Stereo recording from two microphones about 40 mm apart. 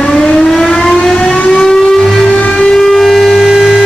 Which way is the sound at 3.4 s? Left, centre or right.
Centre.